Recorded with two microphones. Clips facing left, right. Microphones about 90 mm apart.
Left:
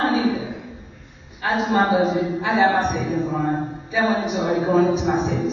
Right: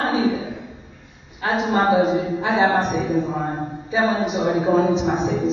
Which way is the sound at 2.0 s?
20° right (ahead or behind).